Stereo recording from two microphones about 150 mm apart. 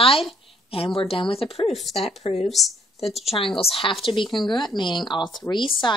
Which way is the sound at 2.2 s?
45° left (ahead or behind).